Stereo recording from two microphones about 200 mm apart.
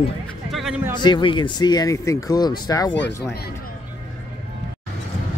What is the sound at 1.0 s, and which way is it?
Speech, 20° left (ahead or behind).